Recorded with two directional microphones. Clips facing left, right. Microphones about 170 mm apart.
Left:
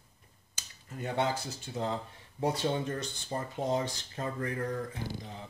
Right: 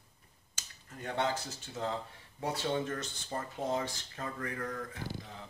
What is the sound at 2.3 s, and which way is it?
Speech, 30° left (ahead or behind).